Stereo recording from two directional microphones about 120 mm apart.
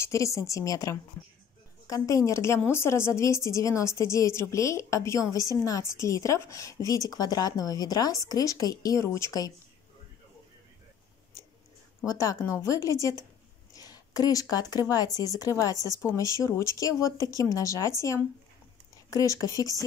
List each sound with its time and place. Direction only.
0.0 s a woman's voice: 25° left (ahead or behind)
12.1 s a woman's voice: 30° left (ahead or behind)